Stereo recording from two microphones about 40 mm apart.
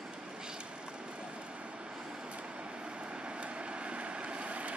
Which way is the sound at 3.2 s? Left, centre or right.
Right.